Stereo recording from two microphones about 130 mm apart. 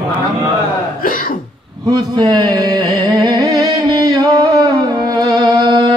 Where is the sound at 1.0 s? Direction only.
90° left.